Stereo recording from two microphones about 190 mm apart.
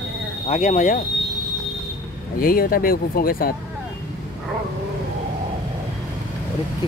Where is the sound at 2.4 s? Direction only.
50° left (ahead or behind).